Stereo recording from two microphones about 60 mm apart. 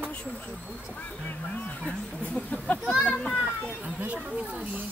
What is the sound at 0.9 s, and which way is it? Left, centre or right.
Speech, left.